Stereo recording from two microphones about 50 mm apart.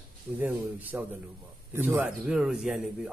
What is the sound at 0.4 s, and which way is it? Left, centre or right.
Speech, right.